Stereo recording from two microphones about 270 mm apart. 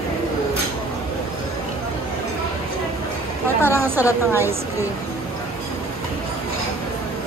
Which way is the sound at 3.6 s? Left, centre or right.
Centre.